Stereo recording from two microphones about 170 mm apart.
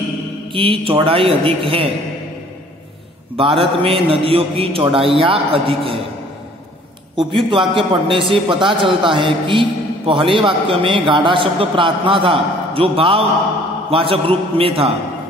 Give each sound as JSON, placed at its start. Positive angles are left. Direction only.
{"t": 0.5, "sound": "a man's voice", "side_deg": -30}
{"t": 3.3, "sound": "a man's voice", "side_deg": -35}
{"t": 7.4, "sound": "a man's voice", "side_deg": -30}